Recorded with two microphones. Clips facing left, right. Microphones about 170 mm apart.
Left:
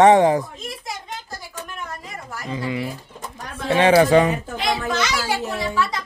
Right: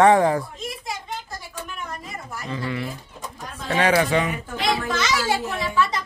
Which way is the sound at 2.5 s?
15° left (ahead or behind).